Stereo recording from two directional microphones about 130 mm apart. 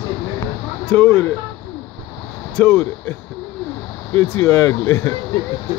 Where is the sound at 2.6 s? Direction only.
10° left (ahead or behind).